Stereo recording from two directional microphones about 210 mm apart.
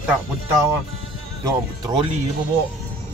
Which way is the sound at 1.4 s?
20° right (ahead or behind).